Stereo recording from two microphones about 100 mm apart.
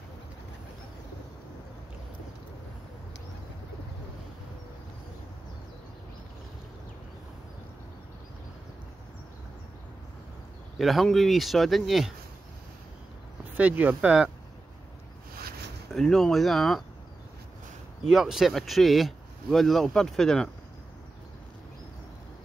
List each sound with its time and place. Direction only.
10.8 s speech: centre (ahead or behind)
13.6 s speech: 15° right (ahead or behind)
15.9 s speech: 5° left (ahead or behind)
18.1 s speech: 5° right (ahead or behind)